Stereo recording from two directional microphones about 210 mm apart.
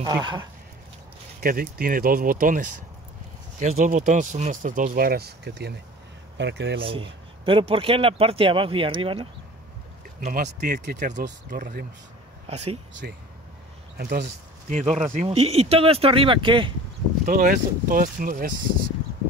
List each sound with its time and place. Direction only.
0.0 s a man's voice: 20° right (ahead or behind)
1.4 s speech: 45° right (ahead or behind)
6.8 s a man's voice: 25° right (ahead or behind)
10.6 s speech: 45° right (ahead or behind); by 12.7 s 30° right (ahead or behind)
13.0 s a man's voice: 50° right (ahead or behind); by 16.7 s 25° right (ahead or behind)
17.2 s speech: 40° right (ahead or behind)